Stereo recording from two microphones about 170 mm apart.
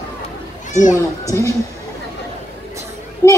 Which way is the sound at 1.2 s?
20° left (ahead or behind).